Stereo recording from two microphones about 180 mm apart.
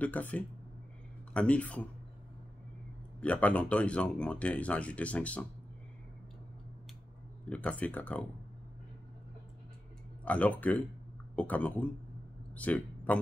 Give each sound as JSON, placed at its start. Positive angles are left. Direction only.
{"t": 0.0, "sound": "speech", "side_deg": 10}
{"t": 3.2, "sound": "speech", "side_deg": 10}
{"t": 7.4, "sound": "speech", "side_deg": 5}
{"t": 10.2, "sound": "speech", "side_deg": 10}